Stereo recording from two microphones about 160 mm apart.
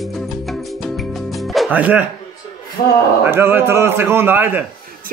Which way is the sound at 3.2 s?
15° right (ahead or behind).